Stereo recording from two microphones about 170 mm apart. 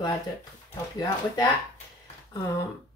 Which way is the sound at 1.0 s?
25° left (ahead or behind).